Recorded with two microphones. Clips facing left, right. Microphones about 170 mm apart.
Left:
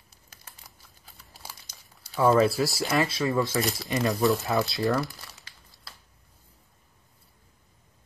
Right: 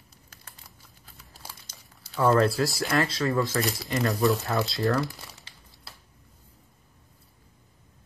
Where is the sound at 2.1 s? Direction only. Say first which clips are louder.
Left 1 dB; 10° left (ahead or behind).